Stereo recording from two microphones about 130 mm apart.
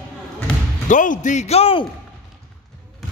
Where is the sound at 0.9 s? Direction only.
75° left (ahead or behind); by 1.8 s 50° left (ahead or behind).